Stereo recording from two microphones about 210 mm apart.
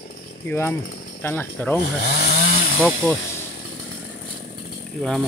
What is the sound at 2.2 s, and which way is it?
Chainsaw, 50° left (ahead or behind).